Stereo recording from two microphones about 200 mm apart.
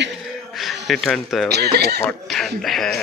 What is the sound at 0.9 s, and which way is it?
Speech, centre (ahead or behind).